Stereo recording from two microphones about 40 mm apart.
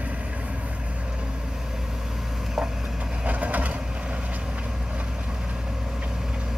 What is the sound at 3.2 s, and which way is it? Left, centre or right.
Crushing, right.